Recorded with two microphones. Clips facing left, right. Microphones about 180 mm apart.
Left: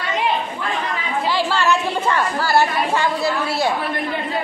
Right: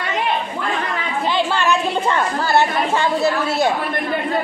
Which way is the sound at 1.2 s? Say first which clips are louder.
Right 1 dB; 20° right (ahead or behind).